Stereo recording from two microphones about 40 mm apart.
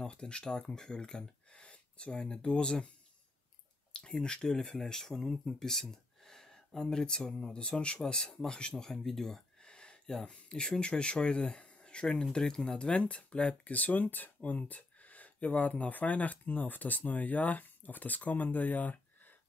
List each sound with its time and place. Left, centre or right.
0.0 s speech: left
3.9 s speech: centre
9.6 s a sound: left
10.2 s speech: left
13.7 s speech: left